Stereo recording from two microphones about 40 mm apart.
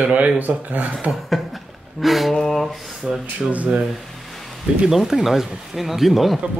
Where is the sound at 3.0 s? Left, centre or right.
Centre.